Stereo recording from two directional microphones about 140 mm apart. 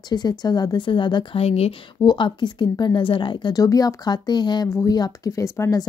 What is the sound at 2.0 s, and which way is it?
Speech, 35° left (ahead or behind).